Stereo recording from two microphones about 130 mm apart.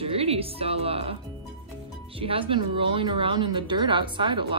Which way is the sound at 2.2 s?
45° right (ahead or behind).